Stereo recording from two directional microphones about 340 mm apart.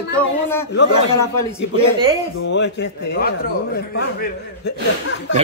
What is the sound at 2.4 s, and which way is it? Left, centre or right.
Speech, left.